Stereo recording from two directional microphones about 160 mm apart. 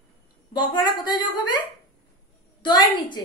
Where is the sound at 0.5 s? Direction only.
30° left (ahead or behind).